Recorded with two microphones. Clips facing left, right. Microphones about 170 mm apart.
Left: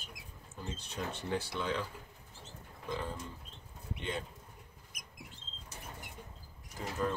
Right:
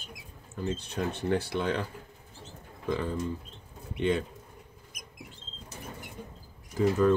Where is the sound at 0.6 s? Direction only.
65° right (ahead or behind).